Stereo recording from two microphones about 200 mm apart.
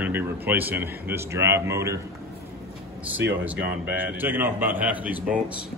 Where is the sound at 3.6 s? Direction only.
55° right (ahead or behind).